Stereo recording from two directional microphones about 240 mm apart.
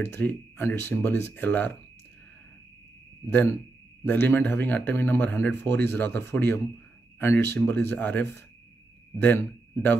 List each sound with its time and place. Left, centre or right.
0.0 s speech: centre
4.0 s speech: centre